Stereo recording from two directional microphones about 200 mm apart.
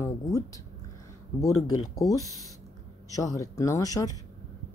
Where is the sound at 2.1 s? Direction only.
15° left (ahead or behind).